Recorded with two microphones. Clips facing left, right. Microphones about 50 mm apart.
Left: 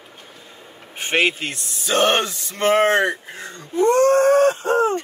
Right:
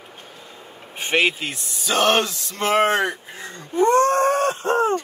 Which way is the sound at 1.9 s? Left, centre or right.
Centre.